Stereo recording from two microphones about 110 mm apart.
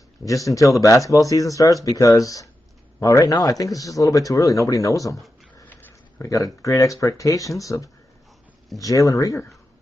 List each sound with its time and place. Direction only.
0.2 s speech: 30° left (ahead or behind)
5.7 s a sound: 15° left (ahead or behind)
6.2 s speech: 30° left (ahead or behind)